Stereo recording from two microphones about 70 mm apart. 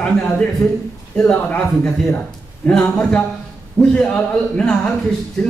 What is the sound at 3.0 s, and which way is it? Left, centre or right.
Speech, centre.